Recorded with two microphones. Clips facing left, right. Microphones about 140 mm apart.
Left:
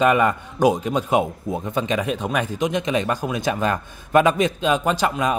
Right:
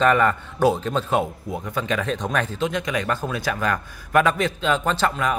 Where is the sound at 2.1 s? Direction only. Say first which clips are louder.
Left 1 dB; 10° left (ahead or behind).